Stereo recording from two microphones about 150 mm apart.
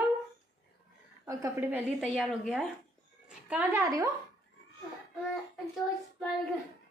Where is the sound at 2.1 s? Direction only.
Centre (ahead or behind).